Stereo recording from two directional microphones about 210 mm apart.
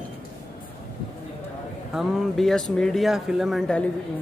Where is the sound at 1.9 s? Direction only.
Centre (ahead or behind).